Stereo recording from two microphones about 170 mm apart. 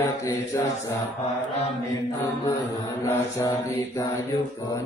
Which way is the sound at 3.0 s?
15° left (ahead or behind).